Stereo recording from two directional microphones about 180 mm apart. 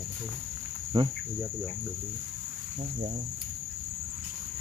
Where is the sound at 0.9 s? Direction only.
30° right (ahead or behind).